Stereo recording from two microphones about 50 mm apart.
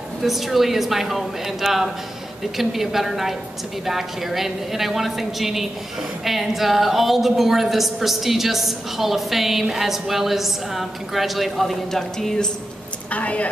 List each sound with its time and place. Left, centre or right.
0.2 s a woman's voice: centre
13.1 s a woman's voice: left